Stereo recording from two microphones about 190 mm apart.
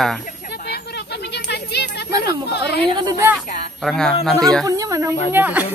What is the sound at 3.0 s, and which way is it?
Speech, 15° right (ahead or behind).